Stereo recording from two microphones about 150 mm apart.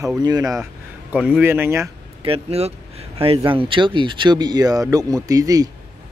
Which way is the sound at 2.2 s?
40° right (ahead or behind).